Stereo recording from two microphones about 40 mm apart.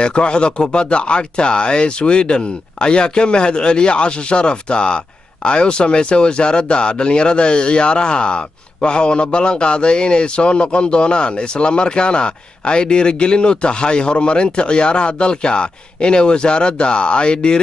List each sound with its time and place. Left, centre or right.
0.0 s speech: left